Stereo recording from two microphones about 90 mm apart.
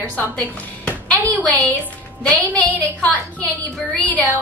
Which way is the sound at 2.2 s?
15° left (ahead or behind).